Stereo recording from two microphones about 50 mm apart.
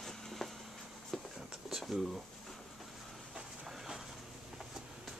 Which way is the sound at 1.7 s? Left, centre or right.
Centre.